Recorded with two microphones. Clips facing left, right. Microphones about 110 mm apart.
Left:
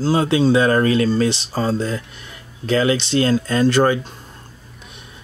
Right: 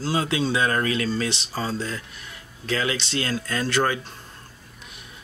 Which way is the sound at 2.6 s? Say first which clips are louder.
Left 9 dB; 25° left (ahead or behind).